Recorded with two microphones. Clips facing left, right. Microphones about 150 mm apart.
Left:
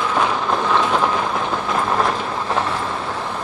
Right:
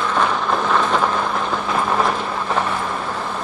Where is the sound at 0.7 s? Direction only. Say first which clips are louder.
Even; 10° left (ahead or behind).